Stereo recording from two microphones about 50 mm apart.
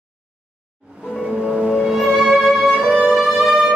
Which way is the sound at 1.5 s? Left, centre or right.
Centre.